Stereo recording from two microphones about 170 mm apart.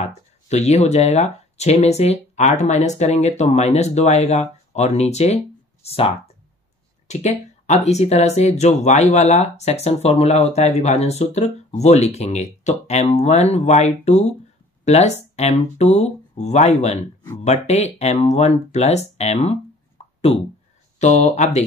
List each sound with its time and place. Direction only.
0.0 s speech: 40° left (ahead or behind)
20.0 s a sound: 40° left (ahead or behind)
21.0 s speech: 40° left (ahead or behind)